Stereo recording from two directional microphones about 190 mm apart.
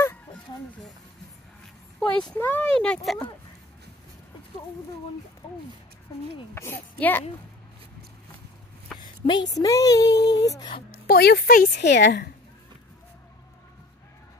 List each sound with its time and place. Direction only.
2.0 s speech: 5° left (ahead or behind)
6.5 s a child's voice: 10° left (ahead or behind)
9.0 s a woman's voice: 25° left (ahead or behind)
10.9 s speech: 55° left (ahead or behind)